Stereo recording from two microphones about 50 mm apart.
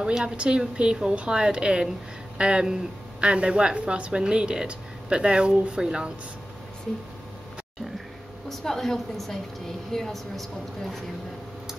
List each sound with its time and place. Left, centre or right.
0.0 s a woman's voice: right
8.5 s speech: centre